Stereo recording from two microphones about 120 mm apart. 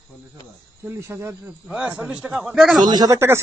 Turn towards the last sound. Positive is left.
turn(degrees=-35)  # may be behind; listen again after turning